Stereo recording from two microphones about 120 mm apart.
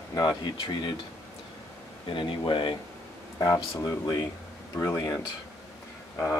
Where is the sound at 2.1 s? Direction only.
45° left (ahead or behind).